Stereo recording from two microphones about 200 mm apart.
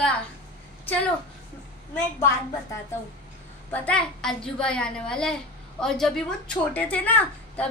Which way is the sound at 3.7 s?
5° left (ahead or behind).